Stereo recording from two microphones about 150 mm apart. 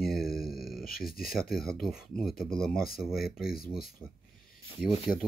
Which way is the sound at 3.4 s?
85° left.